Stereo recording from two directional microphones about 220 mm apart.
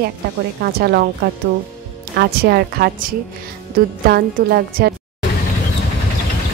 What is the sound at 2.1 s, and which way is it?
A woman's voice, 50° right (ahead or behind).